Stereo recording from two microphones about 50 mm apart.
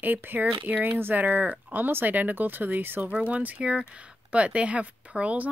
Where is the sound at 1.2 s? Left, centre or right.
Right.